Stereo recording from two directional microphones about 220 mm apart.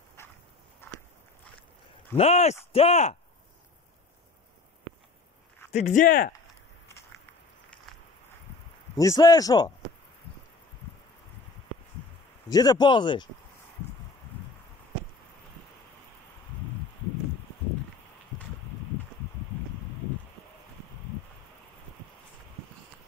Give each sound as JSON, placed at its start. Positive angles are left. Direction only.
{"t": 0.2, "sound": "walk", "side_deg": 10}
{"t": 2.1, "sound": "speech", "side_deg": 30}
{"t": 5.7, "sound": "speech", "side_deg": 30}
{"t": 8.9, "sound": "speech", "side_deg": 15}
{"t": 12.4, "sound": "speech", "side_deg": 15}